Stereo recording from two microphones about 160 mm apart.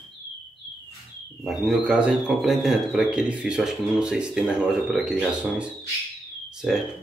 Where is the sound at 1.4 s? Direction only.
Centre (ahead or behind).